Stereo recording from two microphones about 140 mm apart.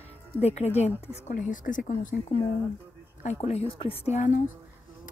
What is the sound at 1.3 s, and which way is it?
Speech, 70° left (ahead or behind).